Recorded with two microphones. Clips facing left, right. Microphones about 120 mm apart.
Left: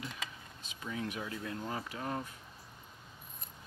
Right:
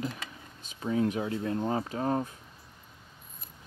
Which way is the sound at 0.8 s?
35° right (ahead or behind).